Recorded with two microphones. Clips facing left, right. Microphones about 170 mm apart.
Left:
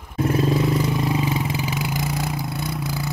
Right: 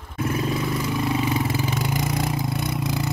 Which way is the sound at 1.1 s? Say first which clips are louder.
Even; 15° left (ahead or behind).